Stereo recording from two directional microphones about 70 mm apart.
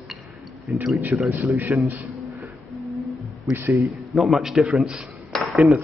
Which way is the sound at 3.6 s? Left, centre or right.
Right.